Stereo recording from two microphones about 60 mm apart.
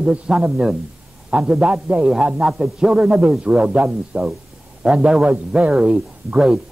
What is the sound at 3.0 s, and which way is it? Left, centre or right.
A man's voice, right.